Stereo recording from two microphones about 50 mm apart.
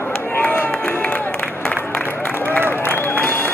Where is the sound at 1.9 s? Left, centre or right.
Left.